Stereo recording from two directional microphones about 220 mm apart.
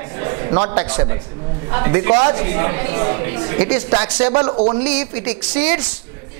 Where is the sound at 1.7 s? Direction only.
20° right (ahead or behind).